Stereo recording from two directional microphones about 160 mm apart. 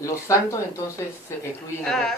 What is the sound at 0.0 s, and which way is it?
Speech, 20° left (ahead or behind).